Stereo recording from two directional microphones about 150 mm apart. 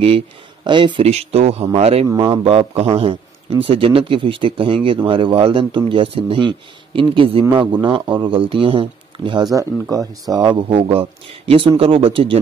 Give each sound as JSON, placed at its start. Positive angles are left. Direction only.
{"t": 0.7, "sound": "speech", "side_deg": -30}
{"t": 2.0, "sound": "a man's voice", "side_deg": -30}
{"t": 10.7, "sound": "a man's voice", "side_deg": -40}